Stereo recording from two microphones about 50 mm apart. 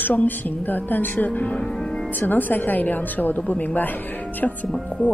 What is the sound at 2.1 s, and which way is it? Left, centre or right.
Speech, left.